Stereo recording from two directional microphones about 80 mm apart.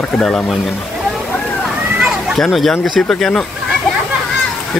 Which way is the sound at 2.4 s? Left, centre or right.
Centre.